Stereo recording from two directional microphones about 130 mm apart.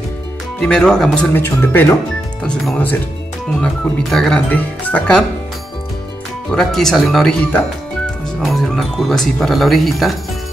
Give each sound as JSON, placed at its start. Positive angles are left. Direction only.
{"t": 0.6, "sound": "speech", "side_deg": 5}
{"t": 1.3, "sound": "speech", "side_deg": 15}
{"t": 2.4, "sound": "speech", "side_deg": 5}
{"t": 6.5, "sound": "speech", "side_deg": 5}